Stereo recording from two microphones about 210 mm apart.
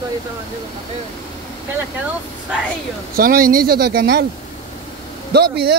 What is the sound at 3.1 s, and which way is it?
Speech, 45° right (ahead or behind).